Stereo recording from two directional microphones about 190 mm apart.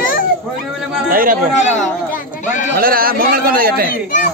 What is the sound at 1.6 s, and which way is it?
Speech, 40° left (ahead or behind).